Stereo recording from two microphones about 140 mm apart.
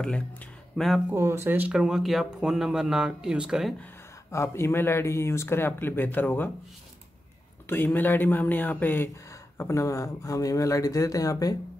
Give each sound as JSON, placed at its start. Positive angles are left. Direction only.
{"t": 0.0, "sound": "speech", "side_deg": 5}
{"t": 1.1, "sound": "speech", "side_deg": -15}
{"t": 1.7, "sound": "speech", "side_deg": -5}
{"t": 4.3, "sound": "speech", "side_deg": 20}
{"t": 7.6, "sound": "speech", "side_deg": 15}